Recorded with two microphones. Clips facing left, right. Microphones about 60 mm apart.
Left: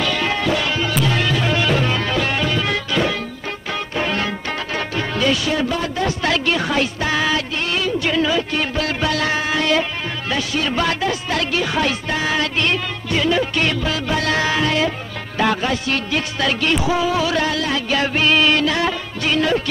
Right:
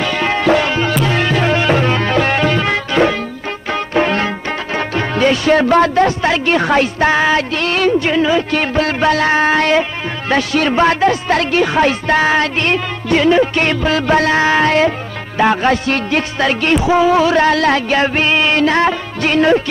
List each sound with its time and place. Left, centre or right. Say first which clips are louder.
0.0 s music: right 5 dB; right
6.2 s music: right 4 dB; right
6.5 s music: right 6 dB; right
7.5 s speech: right 7 dB; right
8.0 s music: right 5 dB; right
8.7 s music: right 9 dB; right
10.7 s music: right 9 dB; right
14.2 s music: right 6 dB; right
15.3 s music: right 5 dB; right
15.6 s music: right 6 dB; right
17.6 s speech: right 8 dB; right
17.8 s music: right 4 dB; right